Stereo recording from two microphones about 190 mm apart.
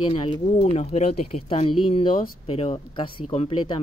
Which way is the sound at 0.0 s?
25° left (ahead or behind).